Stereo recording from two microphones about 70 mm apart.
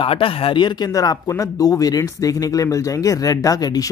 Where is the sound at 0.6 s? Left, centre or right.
Left.